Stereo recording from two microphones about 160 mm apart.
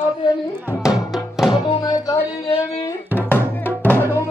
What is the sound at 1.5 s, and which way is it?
Music, 30° left (ahead or behind).